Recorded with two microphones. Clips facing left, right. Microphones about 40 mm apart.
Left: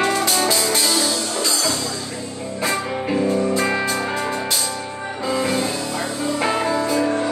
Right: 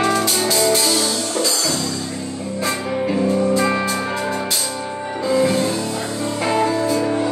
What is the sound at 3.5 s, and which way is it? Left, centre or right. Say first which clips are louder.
Music: right 2 dB; centre.